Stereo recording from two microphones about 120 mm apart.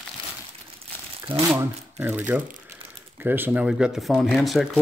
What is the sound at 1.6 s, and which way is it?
Speech, 20° right (ahead or behind).